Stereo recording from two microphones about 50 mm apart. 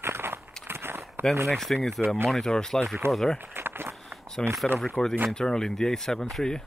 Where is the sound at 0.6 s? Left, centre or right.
Right.